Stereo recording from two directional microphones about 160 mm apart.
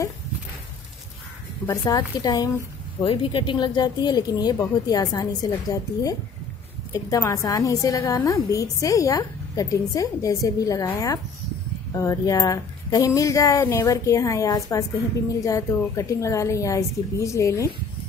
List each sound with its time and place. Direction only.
1.9 s a woman's voice: 20° left (ahead or behind)